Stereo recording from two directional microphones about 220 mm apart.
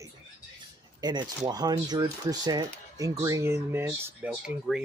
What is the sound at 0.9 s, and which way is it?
Speech, 20° right (ahead or behind).